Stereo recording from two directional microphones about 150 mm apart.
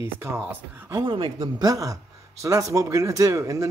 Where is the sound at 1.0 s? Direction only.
30° right (ahead or behind).